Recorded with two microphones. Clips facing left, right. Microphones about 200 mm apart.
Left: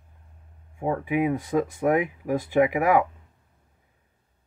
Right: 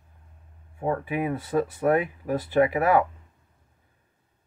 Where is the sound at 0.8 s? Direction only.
15° left (ahead or behind).